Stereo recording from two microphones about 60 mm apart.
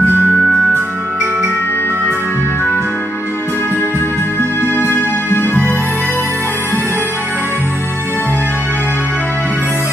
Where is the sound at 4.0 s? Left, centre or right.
Left.